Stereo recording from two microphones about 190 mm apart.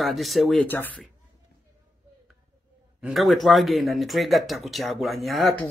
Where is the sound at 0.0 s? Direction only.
Centre (ahead or behind).